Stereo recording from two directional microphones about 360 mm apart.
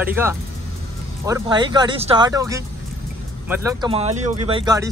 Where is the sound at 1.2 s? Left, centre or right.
Centre.